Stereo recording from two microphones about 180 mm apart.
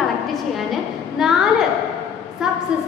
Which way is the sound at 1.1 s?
5° right (ahead or behind).